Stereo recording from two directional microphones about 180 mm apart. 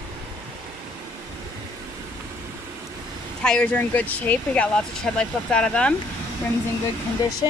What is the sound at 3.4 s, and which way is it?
Speech, 5° left (ahead or behind).